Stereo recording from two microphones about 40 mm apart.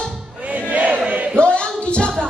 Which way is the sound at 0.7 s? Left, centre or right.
Right.